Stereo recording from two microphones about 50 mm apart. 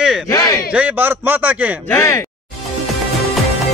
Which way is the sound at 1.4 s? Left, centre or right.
Right.